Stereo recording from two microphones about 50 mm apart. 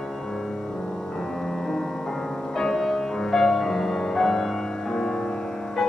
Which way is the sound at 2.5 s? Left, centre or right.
Centre.